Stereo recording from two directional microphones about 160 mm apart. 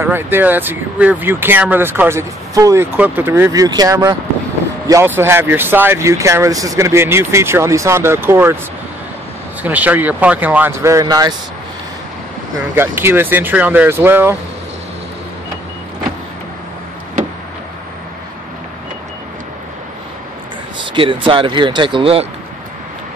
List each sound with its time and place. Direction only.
0.0 s speech: 15° right (ahead or behind)
9.6 s speech: 10° right (ahead or behind)
12.5 s speech: 15° right (ahead or behind)
20.8 s speech: 30° right (ahead or behind)